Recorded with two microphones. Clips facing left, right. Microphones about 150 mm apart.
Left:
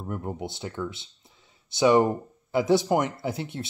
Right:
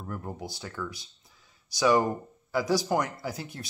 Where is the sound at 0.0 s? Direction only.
20° left (ahead or behind).